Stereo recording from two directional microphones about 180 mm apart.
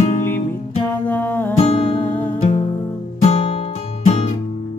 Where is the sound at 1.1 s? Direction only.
10° left (ahead or behind).